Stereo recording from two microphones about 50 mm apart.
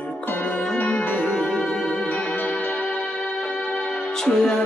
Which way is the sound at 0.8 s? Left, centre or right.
Left.